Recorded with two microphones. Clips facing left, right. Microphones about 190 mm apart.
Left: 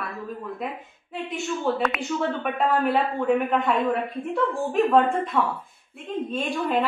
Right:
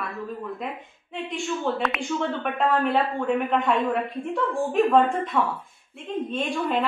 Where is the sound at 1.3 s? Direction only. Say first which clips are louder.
Left 1 dB; centre (ahead or behind).